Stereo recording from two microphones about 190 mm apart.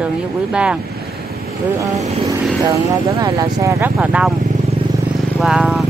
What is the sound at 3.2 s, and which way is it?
Speech, 20° right (ahead or behind).